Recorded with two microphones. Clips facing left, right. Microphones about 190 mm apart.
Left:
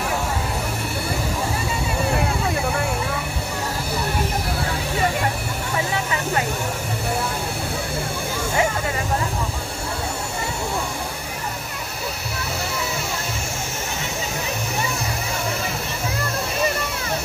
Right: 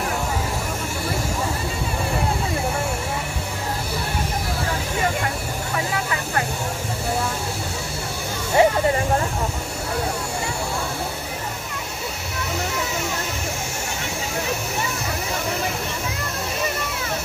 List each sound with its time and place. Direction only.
8.6 s vehicle: 30° right (ahead or behind)